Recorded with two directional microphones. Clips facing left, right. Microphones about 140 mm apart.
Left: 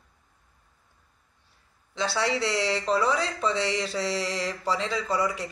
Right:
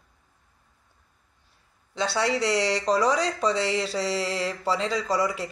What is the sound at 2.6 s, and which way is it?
A woman's voice, 35° right (ahead or behind).